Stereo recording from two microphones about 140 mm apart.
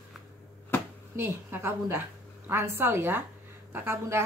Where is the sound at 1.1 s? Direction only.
15° right (ahead or behind).